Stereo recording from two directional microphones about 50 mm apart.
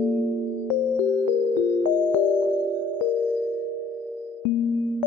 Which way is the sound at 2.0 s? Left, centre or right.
Left.